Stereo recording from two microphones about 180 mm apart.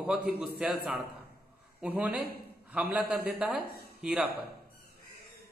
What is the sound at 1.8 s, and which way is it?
A man's voice, 10° right (ahead or behind).